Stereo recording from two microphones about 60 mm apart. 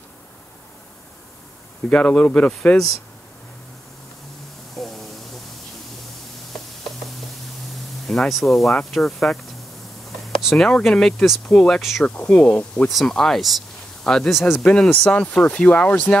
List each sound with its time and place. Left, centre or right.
1.9 s speech: centre
4.7 s a sound: centre
7.7 s spray: centre
8.7 s speech: centre
12.1 s speech: left
12.8 s speech: centre
15.0 s speech: left